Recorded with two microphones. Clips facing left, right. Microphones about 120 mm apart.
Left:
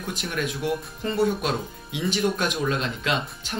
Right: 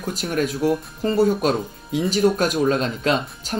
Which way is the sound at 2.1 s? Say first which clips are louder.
Right 5 dB; 40° right (ahead or behind).